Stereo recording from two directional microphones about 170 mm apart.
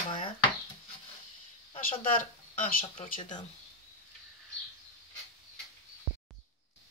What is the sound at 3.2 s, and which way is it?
Speech, 25° left (ahead or behind).